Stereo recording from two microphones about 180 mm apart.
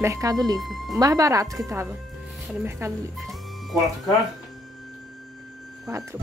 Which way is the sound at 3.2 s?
Centre (ahead or behind).